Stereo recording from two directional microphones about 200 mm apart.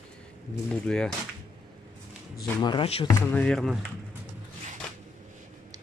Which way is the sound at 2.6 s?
25° left (ahead or behind).